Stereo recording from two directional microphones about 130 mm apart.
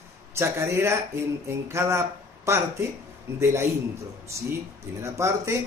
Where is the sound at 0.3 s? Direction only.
20° right (ahead or behind).